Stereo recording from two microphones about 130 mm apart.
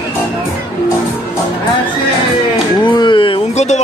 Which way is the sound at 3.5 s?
60° left (ahead or behind).